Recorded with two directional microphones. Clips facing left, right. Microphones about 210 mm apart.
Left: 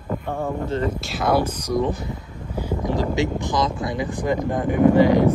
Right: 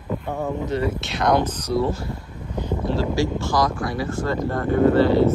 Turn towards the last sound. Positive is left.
turn(degrees=15)  # may be behind; listen again after turning